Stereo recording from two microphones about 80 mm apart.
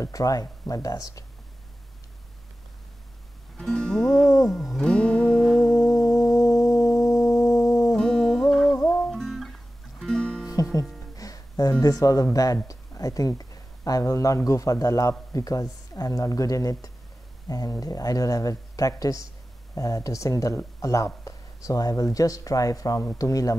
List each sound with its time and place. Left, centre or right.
0.0 s speech: left
3.5 s music: centre
5.3 s music: centre
5.9 s music: left
7.9 s music: centre
10.4 s music: left
11.8 s speech: left